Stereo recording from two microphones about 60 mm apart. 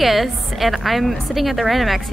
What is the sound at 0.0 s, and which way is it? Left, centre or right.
A woman's voice, centre.